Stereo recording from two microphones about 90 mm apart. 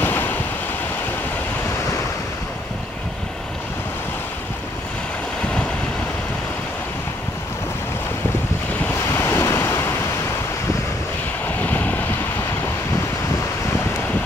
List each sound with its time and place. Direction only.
0.0 s waves: 25° left (ahead or behind)
9.1 s waves: 30° left (ahead or behind)
11.4 s vehicle: 20° left (ahead or behind)